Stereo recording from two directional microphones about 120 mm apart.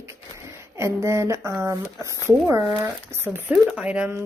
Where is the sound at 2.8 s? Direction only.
15° right (ahead or behind).